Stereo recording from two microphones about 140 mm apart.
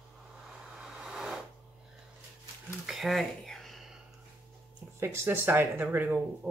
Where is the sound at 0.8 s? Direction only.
5° right (ahead or behind).